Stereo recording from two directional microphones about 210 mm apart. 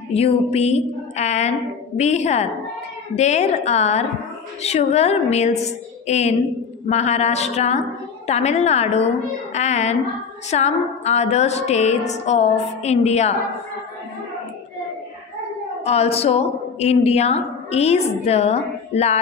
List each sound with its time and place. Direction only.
0.1 s music: 30° left (ahead or behind)
15.8 s a woman's voice: 30° left (ahead or behind)